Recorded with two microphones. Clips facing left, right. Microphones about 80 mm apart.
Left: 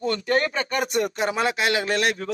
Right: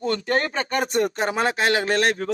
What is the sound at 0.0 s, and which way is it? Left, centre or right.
Speech, right.